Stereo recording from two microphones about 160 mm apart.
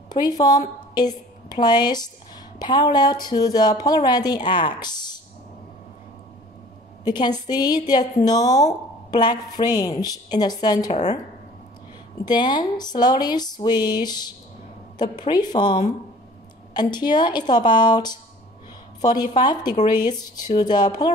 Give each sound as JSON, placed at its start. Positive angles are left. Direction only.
{"t": 0.1, "sound": "a woman's voice", "side_deg": 25}
{"t": 7.1, "sound": "a woman's voice", "side_deg": 25}
{"t": 12.3, "sound": "a woman's voice", "side_deg": 30}